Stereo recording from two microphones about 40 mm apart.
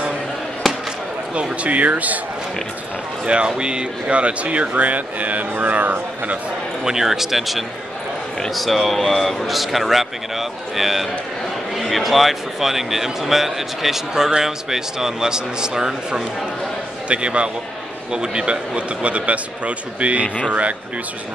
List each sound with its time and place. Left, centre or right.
0.7 s basketball bounce: centre
1.3 s speech: right
3.3 s speech: right
6.8 s a man's voice: centre
17.1 s speech: right